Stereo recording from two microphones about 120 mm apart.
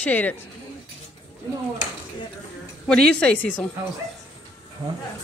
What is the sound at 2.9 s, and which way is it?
Speech, 5° left (ahead or behind).